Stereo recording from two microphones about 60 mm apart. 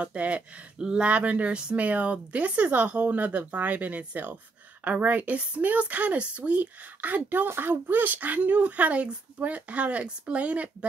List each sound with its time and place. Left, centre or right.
0.0 s a woman's voice: right